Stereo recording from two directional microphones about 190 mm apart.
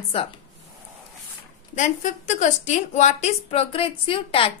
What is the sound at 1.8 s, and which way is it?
A woman's voice, 40° left (ahead or behind).